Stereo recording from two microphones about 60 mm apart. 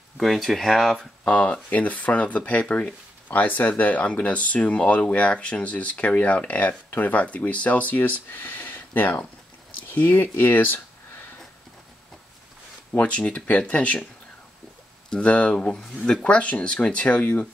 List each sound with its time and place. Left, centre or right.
0.2 s speech: centre
1.2 s speech: centre
9.8 s a sound: left
12.9 s speech: left
15.0 s speech: centre